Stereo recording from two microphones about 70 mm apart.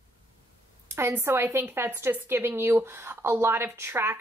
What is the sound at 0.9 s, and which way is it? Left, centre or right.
A woman's voice, right.